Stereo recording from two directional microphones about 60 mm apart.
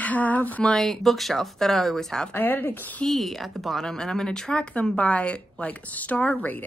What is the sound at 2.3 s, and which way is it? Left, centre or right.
Speech, left.